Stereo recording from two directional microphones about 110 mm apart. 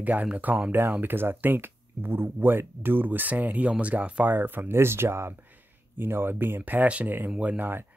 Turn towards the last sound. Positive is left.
turn(degrees=-15)  # may be behind; listen again after turning